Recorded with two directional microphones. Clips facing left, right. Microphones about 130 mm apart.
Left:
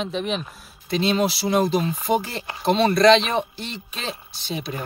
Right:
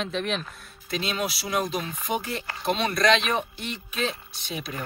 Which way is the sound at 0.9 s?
30° left (ahead or behind).